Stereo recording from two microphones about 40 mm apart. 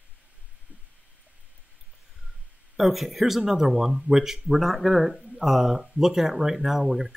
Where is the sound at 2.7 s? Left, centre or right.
Centre.